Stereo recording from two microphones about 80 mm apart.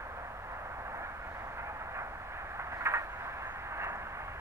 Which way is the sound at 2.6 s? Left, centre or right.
Right.